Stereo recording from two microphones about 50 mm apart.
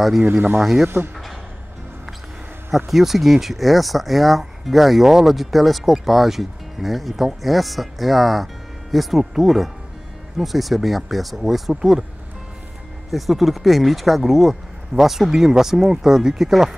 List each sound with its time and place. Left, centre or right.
0.2 s speech: right
0.6 s speech: centre
0.8 s speech: right
2.9 s speech: centre
13.1 s speech: centre